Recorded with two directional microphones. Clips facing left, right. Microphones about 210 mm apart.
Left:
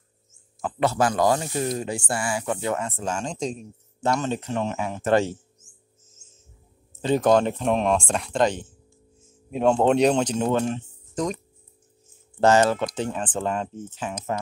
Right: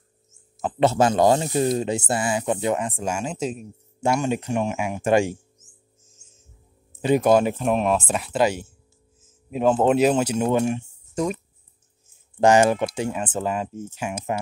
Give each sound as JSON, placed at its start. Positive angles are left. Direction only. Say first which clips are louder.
{"t": 0.6, "sound": "speech", "louder": "right 3 dB", "side_deg": -25}
{"t": 6.9, "sound": "speech", "louder": "right 2 dB", "side_deg": -10}
{"t": 12.4, "sound": "speech", "louder": "right 2 dB", "side_deg": -15}